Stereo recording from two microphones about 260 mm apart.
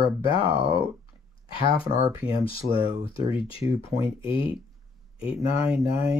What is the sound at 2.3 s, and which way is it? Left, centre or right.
Speech, left.